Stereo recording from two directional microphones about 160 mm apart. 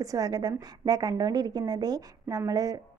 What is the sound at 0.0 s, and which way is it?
A woman's voice, 20° right (ahead or behind).